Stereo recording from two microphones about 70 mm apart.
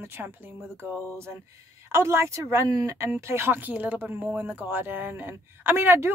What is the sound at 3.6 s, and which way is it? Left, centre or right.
Speech, right.